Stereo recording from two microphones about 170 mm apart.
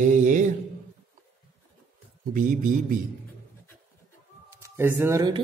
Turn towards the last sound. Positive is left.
turn(degrees=-15)  # may be behind; listen again after turning